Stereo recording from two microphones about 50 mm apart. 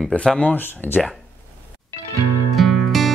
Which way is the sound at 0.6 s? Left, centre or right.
Left.